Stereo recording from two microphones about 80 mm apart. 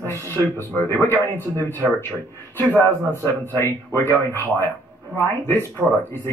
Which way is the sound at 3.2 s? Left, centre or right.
Left.